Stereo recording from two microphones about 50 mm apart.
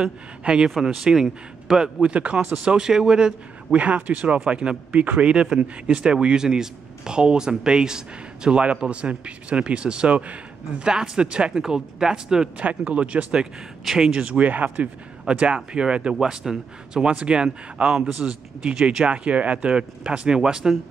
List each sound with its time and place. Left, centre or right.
0.4 s speech: centre
2.0 s speech: right
3.7 s speech: right
12.5 s speech: right
17.1 s speech: right